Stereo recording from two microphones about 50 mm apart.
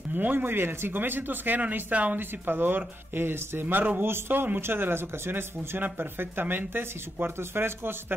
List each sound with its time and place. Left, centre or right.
0.1 s speech: right
1.6 s speech: right
2.1 s speech: right
4.0 s speech: right
5.8 s speech: right
6.4 s speech: right
6.7 s speech: right